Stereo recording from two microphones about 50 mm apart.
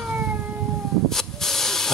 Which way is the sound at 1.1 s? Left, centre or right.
Centre.